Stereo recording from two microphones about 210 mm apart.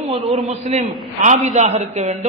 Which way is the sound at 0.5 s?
30° right (ahead or behind).